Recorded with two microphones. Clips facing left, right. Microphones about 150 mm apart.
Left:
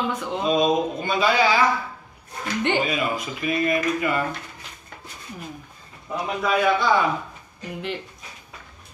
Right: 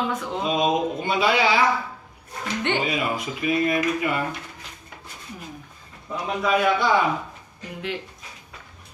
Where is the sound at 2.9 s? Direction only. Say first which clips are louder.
Even; 20° right (ahead or behind).